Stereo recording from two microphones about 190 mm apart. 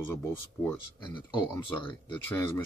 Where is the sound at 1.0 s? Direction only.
25° left (ahead or behind).